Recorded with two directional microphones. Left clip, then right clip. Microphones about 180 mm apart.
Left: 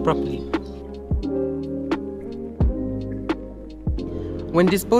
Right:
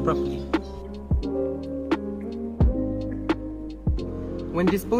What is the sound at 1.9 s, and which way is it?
Music, centre (ahead or behind).